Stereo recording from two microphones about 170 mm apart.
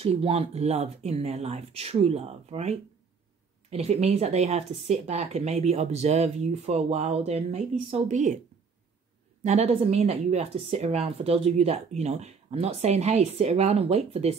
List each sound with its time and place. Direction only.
0.0 s speech: 35° right (ahead or behind)
9.4 s speech: 40° right (ahead or behind)